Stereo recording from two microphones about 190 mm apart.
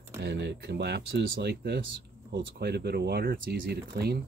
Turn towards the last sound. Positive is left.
turn(degrees=-60)  # may be behind; listen again after turning